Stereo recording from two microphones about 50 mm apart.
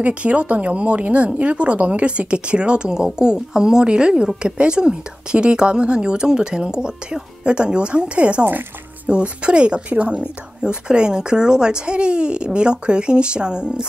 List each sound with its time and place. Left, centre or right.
0.0 s a woman's voice: right
8.5 s a child's voice: right
9.1 s speech: right